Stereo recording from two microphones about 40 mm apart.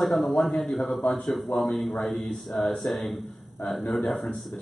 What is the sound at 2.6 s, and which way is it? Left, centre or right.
Speech, centre.